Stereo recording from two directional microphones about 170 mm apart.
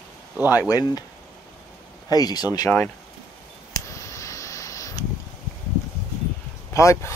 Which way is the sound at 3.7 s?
20° left (ahead or behind).